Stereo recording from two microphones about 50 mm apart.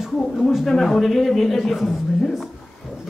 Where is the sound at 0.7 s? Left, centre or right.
Centre.